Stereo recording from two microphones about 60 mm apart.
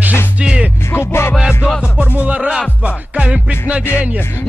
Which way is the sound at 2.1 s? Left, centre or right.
Right.